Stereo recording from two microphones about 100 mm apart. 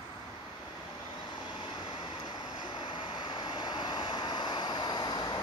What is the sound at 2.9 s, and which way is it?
Vehicle, 55° left (ahead or behind).